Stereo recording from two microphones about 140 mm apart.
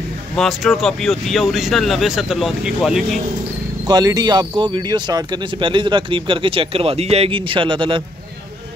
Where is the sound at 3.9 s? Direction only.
25° right (ahead or behind).